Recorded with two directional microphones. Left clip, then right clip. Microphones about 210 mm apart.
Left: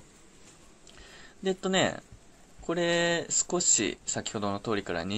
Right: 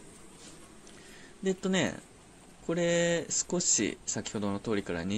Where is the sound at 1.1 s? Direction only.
25° right (ahead or behind).